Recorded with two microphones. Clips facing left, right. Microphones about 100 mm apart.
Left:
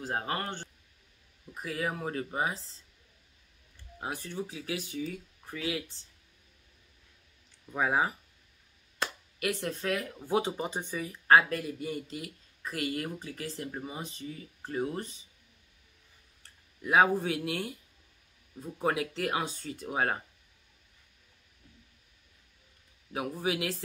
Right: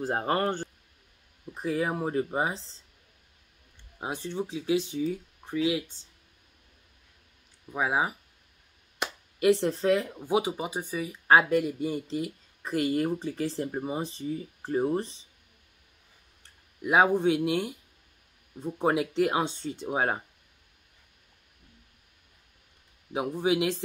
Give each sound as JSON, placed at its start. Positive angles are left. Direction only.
{"t": 0.1, "sound": "speech", "side_deg": -35}
{"t": 1.5, "sound": "speech", "side_deg": -25}
{"t": 4.0, "sound": "speech", "side_deg": -20}
{"t": 7.7, "sound": "speech", "side_deg": -15}
{"t": 9.0, "sound": "speech", "side_deg": -25}
{"t": 10.2, "sound": "speech", "side_deg": -10}
{"t": 16.8, "sound": "speech", "side_deg": -20}
{"t": 23.1, "sound": "speech", "side_deg": -20}